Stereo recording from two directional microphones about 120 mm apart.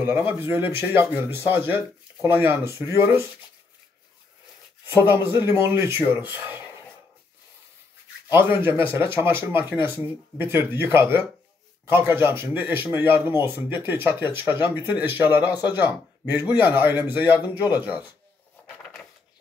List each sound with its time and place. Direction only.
0.0 s speech: 15° right (ahead or behind)
5.2 s speech: 20° right (ahead or behind)
8.3 s speech: 20° right (ahead or behind)
18.8 s a sound: 5° left (ahead or behind)